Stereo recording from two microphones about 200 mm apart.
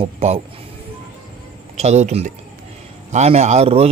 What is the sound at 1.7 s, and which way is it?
A man's voice, 35° right (ahead or behind).